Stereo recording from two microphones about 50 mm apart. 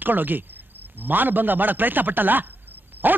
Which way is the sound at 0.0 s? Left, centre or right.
Right.